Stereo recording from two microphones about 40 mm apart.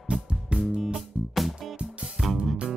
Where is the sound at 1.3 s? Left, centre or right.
Centre.